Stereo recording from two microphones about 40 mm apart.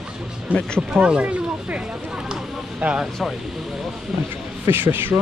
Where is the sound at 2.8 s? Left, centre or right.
Right.